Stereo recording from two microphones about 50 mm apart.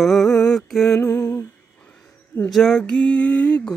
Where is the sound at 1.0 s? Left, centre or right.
Left.